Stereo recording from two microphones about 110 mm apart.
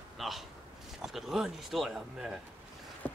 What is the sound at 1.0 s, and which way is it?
Speech, 5° right (ahead or behind).